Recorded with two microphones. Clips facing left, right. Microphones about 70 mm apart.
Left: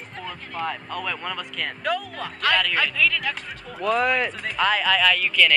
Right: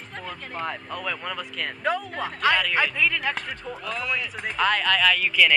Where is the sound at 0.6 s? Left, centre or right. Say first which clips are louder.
Left 2 dB; centre.